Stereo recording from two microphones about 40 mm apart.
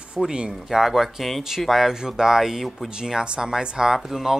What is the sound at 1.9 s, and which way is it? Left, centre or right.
Speech, centre.